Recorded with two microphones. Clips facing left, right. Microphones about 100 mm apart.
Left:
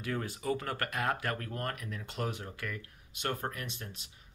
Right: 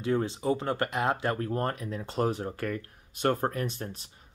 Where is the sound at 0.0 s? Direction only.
25° right (ahead or behind).